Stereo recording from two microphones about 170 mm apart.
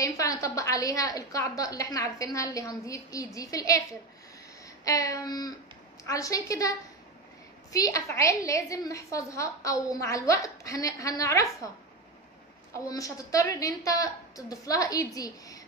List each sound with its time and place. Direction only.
0.0 s a woman's voice: 20° left (ahead or behind)
4.8 s a woman's voice: 20° left (ahead or behind)
7.7 s a woman's voice: 20° left (ahead or behind)
12.7 s a woman's voice: 20° left (ahead or behind)